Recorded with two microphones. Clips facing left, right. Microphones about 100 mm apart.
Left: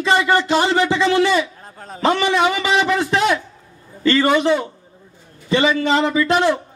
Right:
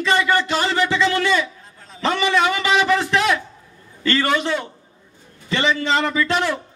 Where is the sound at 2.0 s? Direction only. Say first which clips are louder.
Left 2 dB; 25° left (ahead or behind).